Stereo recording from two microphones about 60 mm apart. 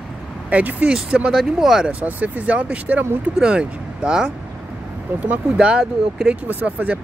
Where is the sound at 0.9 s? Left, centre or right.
Centre.